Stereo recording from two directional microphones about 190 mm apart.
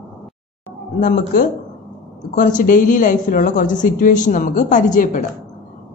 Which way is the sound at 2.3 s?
45° left (ahead or behind).